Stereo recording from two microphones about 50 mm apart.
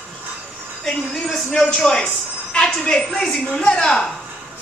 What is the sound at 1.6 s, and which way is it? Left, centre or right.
Speech, centre.